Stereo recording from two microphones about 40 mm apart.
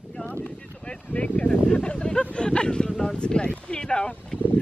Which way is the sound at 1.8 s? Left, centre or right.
Left.